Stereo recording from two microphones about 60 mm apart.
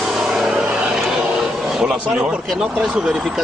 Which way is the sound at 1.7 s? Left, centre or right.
Centre.